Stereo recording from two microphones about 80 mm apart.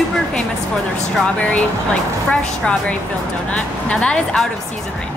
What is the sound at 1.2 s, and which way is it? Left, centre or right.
Speech, centre.